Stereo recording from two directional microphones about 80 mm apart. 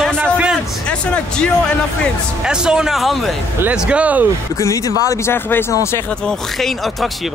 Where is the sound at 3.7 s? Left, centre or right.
Centre.